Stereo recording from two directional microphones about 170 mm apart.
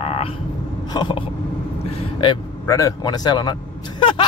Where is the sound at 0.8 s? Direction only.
25° left (ahead or behind).